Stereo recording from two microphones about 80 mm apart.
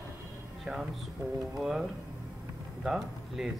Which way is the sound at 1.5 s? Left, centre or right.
Centre.